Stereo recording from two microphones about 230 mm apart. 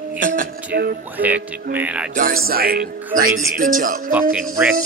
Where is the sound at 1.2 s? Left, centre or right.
Centre.